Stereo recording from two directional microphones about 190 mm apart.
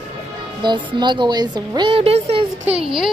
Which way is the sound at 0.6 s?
25° right (ahead or behind).